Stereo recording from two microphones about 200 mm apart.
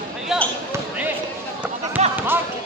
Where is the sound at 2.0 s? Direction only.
35° right (ahead or behind).